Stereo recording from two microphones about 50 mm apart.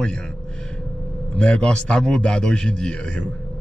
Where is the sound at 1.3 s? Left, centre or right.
Left.